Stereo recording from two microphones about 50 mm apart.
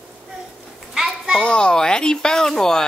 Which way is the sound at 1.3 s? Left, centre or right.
Centre.